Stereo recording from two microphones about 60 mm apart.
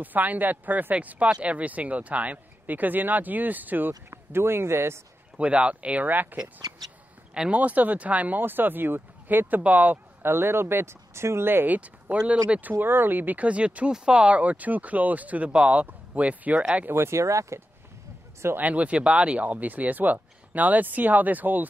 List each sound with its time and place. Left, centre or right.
0.0 s speech: right
4.1 s a man's voice: right
5.4 s speech: right
6.4 s speech: right
7.5 s speech: right
16.9 s speech: right
18.6 s speech: right